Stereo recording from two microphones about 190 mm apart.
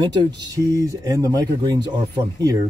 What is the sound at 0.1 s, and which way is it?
Speech, 20° right (ahead or behind).